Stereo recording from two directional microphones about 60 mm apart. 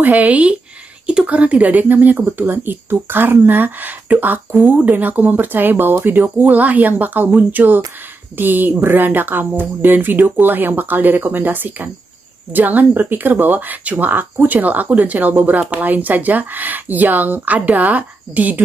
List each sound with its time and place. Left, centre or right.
0.0 s speech: right